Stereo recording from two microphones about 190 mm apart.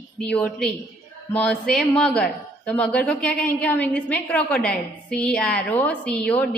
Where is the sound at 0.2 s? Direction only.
5° left (ahead or behind).